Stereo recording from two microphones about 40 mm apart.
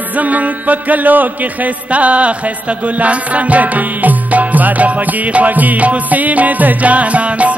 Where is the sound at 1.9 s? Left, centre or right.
Right.